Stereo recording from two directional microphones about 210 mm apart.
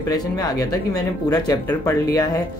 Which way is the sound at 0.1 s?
15° left (ahead or behind).